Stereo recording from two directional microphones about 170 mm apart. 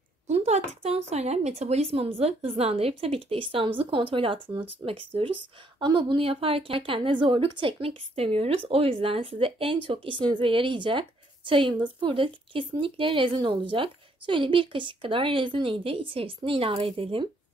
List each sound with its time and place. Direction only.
0.3 s a woman's voice: 40° right (ahead or behind)